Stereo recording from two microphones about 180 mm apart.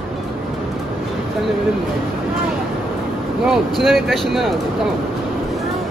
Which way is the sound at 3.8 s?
Centre (ahead or behind).